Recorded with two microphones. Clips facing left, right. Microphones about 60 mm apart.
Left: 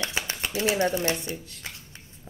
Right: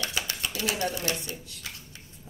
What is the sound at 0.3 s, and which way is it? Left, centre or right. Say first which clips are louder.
Speech: left 5 dB; left.